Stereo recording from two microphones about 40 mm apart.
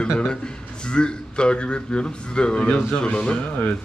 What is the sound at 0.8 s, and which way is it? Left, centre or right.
A man's voice, left.